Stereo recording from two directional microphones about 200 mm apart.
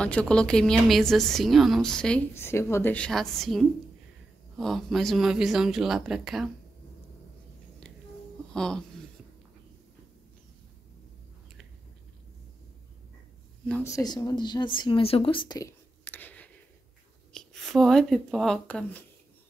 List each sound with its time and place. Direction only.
0.0 s a woman's voice: 5° left (ahead or behind)
8.5 s a woman's voice: 5° left (ahead or behind)
13.7 s speech: 10° left (ahead or behind)